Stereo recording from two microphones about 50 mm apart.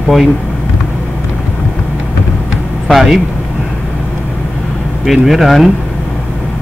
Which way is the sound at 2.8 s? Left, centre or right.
Centre.